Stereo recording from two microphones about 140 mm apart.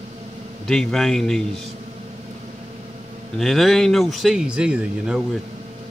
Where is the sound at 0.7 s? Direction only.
5° left (ahead or behind).